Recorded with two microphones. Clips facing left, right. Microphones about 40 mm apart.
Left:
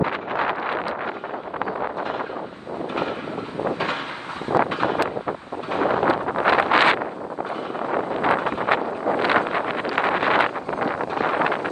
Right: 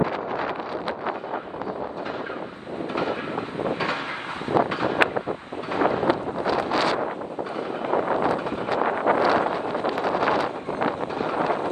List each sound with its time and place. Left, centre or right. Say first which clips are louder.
4.5 s a sound: left 2 dB; left
5.7 s wind noise: left 2 dB; left
8.2 s wind noise: left 3 dB; left
8.8 s wind noise: right 2 dB; right
9.2 s wind noise: left 1 dB; left